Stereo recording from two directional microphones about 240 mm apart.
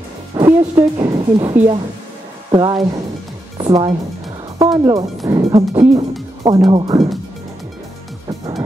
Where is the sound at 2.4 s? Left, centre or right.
Centre.